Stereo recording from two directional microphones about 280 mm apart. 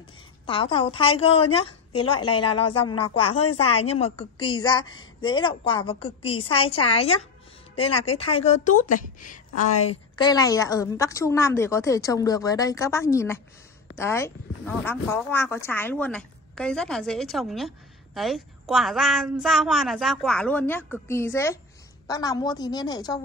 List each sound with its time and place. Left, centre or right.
0.5 s a woman's voice: centre
2.6 s speech: left
3.5 s a woman's voice: left